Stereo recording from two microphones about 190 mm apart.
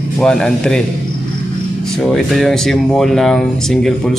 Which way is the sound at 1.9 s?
Centre (ahead or behind).